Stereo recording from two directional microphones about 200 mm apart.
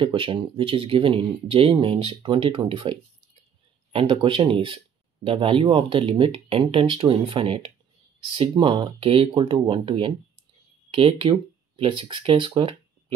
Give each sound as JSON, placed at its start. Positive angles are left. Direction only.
{"t": 0.0, "sound": "speech", "side_deg": -25}